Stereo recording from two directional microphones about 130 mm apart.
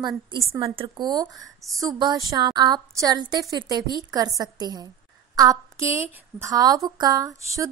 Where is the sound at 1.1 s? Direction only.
25° right (ahead or behind).